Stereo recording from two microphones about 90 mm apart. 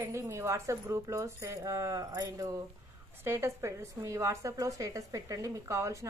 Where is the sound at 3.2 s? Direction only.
30° right (ahead or behind).